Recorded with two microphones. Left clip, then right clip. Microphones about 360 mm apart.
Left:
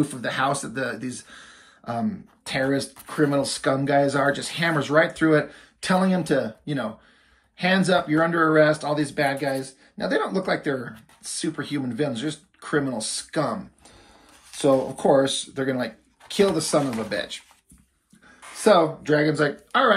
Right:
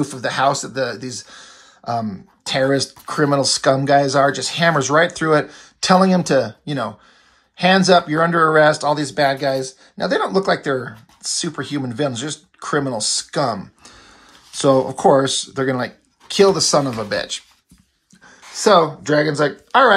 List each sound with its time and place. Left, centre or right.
0.0 s speech: centre
15.0 s speech: right
15.6 s speech: centre
18.6 s speech: right